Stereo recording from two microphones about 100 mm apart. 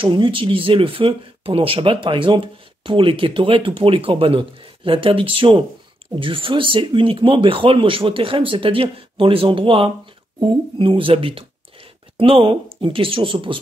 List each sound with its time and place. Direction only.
0.0 s speech: 55° right (ahead or behind)